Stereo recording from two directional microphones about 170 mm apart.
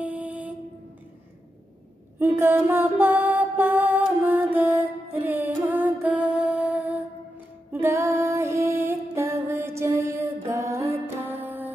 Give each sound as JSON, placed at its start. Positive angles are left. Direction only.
{"t": 0.0, "sound": "music", "side_deg": -10}
{"t": 2.1, "sound": "mantra", "side_deg": -15}
{"t": 7.8, "sound": "music", "side_deg": -15}